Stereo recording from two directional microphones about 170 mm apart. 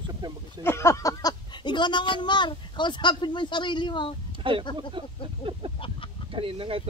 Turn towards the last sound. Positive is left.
turn(degrees=-30)  # may be behind; listen again after turning